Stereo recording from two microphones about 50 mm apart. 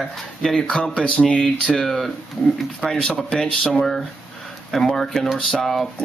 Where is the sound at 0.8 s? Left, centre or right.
Centre.